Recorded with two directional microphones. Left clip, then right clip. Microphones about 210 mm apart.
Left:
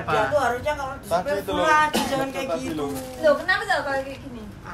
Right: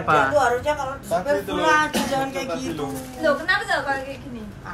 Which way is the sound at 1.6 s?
Centre (ahead or behind).